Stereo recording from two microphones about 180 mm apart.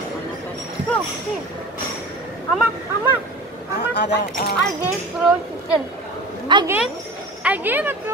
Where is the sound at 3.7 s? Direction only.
70° left (ahead or behind).